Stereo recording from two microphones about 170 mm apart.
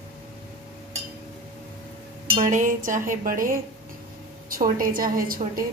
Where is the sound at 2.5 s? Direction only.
50° right (ahead or behind).